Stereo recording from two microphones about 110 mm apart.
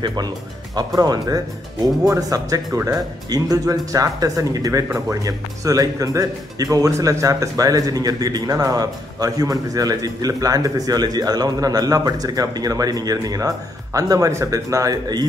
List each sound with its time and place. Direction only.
0.0 s speech: 40° right (ahead or behind)